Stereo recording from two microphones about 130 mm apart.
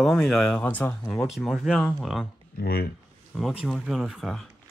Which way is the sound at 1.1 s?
Centre (ahead or behind).